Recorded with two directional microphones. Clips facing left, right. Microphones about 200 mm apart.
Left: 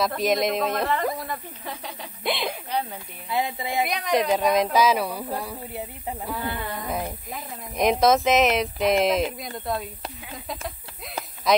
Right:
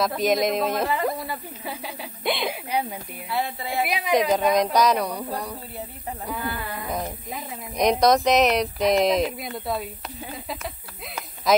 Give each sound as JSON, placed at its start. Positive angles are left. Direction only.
{"t": 0.0, "sound": "a woman's voice", "side_deg": 0}
{"t": 2.7, "sound": "speech", "side_deg": -10}
{"t": 3.3, "sound": "a woman's voice", "side_deg": 15}
{"t": 3.8, "sound": "a woman's voice", "side_deg": -5}
{"t": 11.5, "sound": "a woman's voice", "side_deg": 0}